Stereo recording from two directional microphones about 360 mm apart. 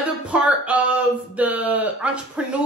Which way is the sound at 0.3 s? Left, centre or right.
Centre.